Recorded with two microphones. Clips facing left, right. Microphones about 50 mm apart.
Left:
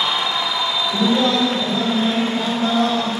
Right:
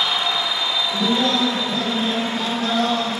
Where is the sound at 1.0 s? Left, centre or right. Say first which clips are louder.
Left 3 dB; centre.